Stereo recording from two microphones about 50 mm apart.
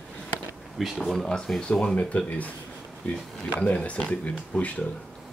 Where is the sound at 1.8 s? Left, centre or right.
Left.